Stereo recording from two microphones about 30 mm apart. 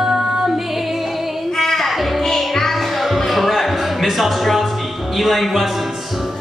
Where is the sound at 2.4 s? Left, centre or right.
Centre.